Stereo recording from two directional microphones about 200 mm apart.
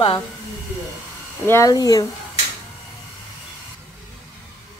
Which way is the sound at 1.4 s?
15° left (ahead or behind).